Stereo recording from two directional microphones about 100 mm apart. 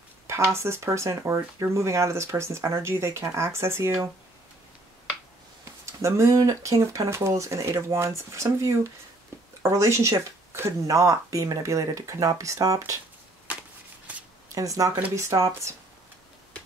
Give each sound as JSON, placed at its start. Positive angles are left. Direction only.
{"t": 0.5, "sound": "speech", "side_deg": -25}
{"t": 5.9, "sound": "speech", "side_deg": -30}
{"t": 13.5, "sound": "a sound", "side_deg": -10}
{"t": 14.5, "sound": "speech", "side_deg": -35}